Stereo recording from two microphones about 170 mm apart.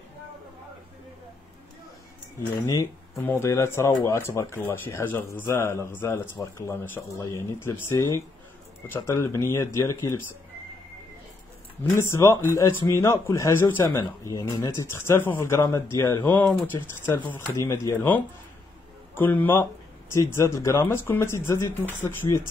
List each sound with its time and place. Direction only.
2.7 s speech: 15° left (ahead or behind)
11.8 s speech: 15° left (ahead or behind)